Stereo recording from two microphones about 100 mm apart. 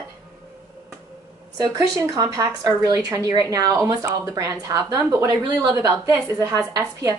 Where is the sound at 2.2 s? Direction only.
35° right (ahead or behind).